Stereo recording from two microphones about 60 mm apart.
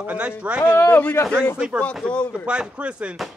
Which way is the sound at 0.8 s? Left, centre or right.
Left.